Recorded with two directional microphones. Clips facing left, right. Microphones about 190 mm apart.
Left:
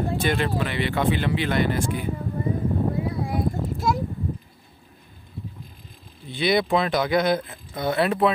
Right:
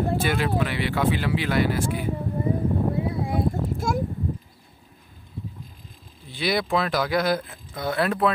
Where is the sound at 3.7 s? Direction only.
50° right (ahead or behind).